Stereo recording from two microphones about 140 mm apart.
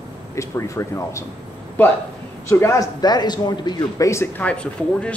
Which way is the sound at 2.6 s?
25° left (ahead or behind).